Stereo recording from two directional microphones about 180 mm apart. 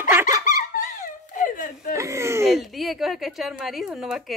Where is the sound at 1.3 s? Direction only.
50° left (ahead or behind).